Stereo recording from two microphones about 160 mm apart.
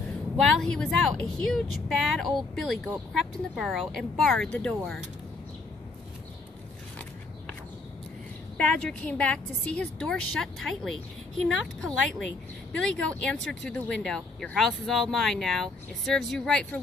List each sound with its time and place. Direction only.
0.4 s speech: 5° left (ahead or behind)
8.5 s speech: 10° left (ahead or behind)